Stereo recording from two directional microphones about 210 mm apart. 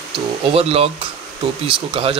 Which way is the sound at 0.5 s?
30° right (ahead or behind).